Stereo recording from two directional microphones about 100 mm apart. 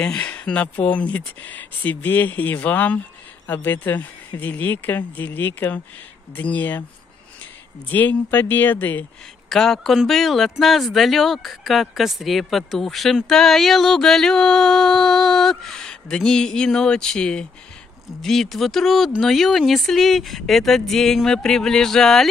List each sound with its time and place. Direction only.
0.0 s speech: 15° left (ahead or behind)
7.9 s speech: 20° left (ahead or behind)
9.5 s speech: 5° left (ahead or behind)